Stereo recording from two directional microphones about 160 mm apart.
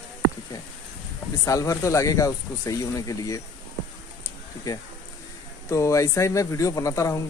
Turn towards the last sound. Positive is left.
turn(degrees=20)  # may be behind; listen again after turning